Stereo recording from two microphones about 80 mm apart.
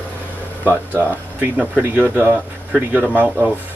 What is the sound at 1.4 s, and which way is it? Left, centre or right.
Speech, right.